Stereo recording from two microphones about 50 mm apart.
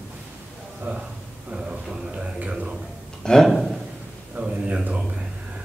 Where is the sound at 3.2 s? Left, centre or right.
Centre.